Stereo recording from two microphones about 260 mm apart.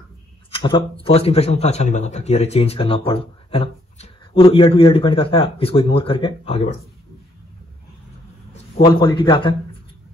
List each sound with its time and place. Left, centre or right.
0.5 s a man's voice: centre
8.8 s a man's voice: centre